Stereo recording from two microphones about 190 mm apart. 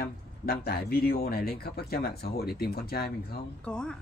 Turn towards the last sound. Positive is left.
turn(degrees=5)  # may be behind; listen again after turning